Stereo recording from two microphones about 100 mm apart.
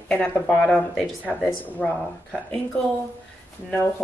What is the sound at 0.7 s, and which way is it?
Speech, 5° left (ahead or behind).